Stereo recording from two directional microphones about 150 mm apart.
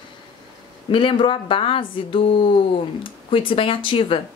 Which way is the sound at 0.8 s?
35° left (ahead or behind).